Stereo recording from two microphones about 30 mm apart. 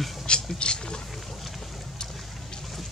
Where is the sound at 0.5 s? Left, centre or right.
Left.